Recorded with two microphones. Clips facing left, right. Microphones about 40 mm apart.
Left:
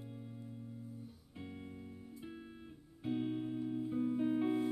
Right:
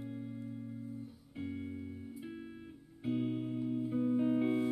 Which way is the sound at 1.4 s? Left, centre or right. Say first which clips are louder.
Right 8 dB; centre.